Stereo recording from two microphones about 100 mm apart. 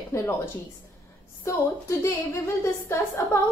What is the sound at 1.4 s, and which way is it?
A woman's voice, 30° left (ahead or behind).